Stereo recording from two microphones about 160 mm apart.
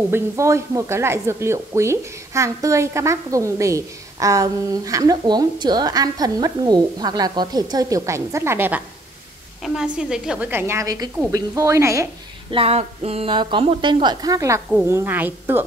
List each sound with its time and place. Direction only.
0.1 s a woman's voice: 15° right (ahead or behind)
12.4 s a woman's voice: 35° right (ahead or behind); by 15.6 s 15° right (ahead or behind)